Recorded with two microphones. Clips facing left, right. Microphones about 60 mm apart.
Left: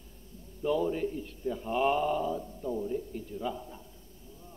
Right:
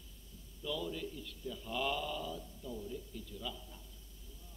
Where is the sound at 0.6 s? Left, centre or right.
Left.